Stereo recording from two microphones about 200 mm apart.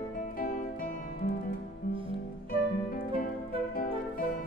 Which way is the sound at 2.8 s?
45° left (ahead or behind).